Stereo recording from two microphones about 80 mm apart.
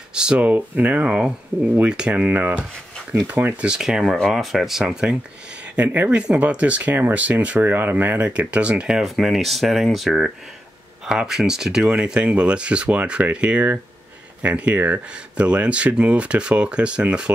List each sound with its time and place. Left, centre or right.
0.1 s speech: centre
3.7 s speech: centre
5.8 s speech: right
9.0 s speech: centre